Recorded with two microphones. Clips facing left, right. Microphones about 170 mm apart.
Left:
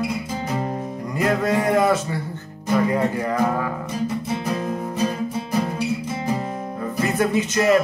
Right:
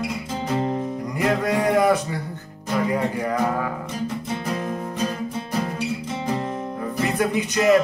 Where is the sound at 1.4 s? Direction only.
15° right (ahead or behind).